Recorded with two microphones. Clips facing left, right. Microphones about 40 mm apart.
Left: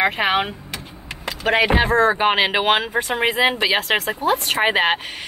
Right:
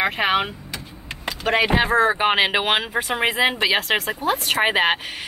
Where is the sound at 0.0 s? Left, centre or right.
Centre.